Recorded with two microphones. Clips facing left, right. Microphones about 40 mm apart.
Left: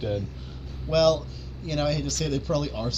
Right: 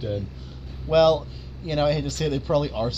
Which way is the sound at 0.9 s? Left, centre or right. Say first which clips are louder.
Right 3 dB; right.